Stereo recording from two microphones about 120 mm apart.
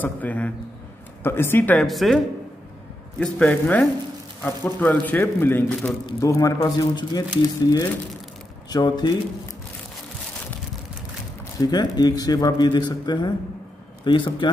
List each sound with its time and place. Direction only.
0.0 s a man's voice: 15° left (ahead or behind)
1.9 s speech: centre (ahead or behind)
3.2 s a man's voice: 10° left (ahead or behind); by 9.1 s 35° left (ahead or behind)
11.5 s a man's voice: 35° left (ahead or behind)